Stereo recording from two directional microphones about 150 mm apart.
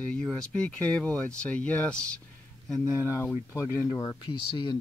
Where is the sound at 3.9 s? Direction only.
30° left (ahead or behind).